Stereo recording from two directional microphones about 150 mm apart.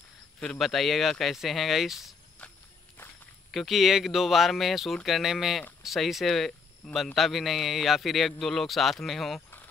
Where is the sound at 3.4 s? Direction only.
Centre (ahead or behind).